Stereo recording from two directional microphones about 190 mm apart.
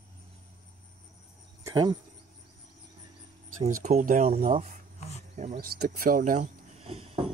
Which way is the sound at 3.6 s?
40° right (ahead or behind).